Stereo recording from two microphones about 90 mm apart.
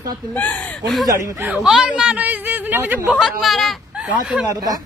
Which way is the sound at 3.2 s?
Centre (ahead or behind).